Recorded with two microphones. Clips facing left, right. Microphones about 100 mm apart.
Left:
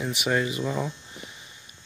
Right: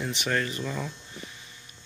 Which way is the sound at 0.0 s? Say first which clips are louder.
Left 3 dB; 10° left (ahead or behind).